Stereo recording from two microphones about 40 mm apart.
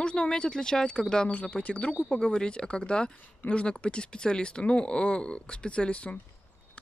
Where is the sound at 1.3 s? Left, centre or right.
Left.